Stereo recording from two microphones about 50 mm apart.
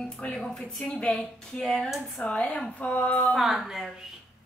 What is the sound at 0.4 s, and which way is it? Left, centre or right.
Speech, centre.